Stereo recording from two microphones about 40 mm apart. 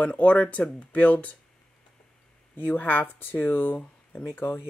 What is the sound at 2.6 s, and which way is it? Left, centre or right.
Speech, left.